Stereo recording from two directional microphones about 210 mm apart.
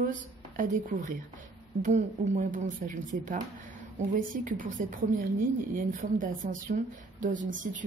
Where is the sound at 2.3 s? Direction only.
40° right (ahead or behind).